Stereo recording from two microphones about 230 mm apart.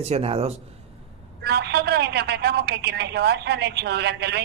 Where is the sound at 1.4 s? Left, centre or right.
Right.